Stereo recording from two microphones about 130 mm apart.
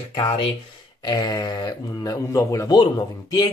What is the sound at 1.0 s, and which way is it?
Speech, 30° left (ahead or behind).